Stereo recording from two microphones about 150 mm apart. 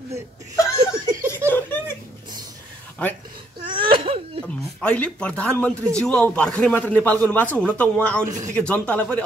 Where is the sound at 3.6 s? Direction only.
35° right (ahead or behind).